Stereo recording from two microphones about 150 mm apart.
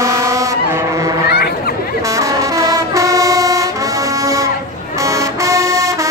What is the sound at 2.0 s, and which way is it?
Brass instrument, 20° right (ahead or behind).